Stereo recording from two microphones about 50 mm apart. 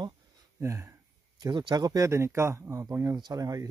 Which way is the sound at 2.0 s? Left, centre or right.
Right.